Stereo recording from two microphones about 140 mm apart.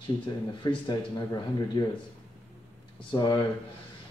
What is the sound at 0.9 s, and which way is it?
Speech, 30° left (ahead or behind).